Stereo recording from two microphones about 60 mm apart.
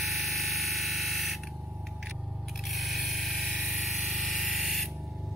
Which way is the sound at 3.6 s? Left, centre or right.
Centre.